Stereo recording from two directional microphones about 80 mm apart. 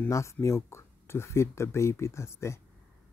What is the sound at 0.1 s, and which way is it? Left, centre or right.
Speech, left.